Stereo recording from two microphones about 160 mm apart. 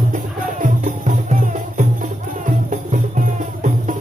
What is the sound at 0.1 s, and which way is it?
Music, 55° right (ahead or behind).